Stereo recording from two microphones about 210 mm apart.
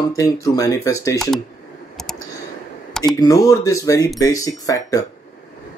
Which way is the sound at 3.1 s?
15° left (ahead or behind).